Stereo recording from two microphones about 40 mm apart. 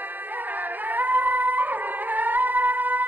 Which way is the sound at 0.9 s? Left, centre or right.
Right.